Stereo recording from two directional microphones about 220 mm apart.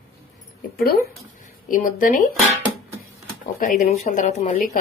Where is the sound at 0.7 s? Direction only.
45° left (ahead or behind).